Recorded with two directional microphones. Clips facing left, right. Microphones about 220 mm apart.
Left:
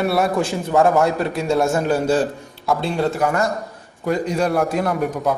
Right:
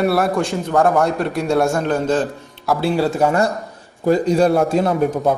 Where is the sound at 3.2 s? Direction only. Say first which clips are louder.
Right 3 dB; 30° right (ahead or behind).